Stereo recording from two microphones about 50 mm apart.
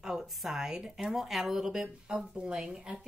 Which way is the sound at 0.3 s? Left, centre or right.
Centre.